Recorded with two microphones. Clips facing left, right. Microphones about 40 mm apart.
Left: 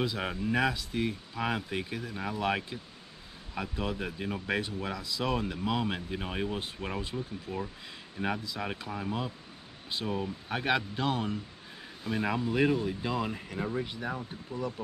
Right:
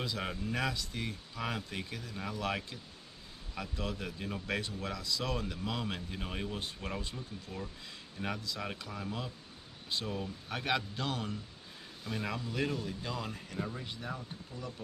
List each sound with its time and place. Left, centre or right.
0.0 s speech: centre
14.5 s speech: left